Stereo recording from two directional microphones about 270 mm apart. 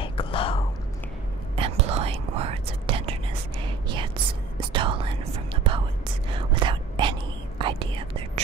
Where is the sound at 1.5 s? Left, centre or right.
Right.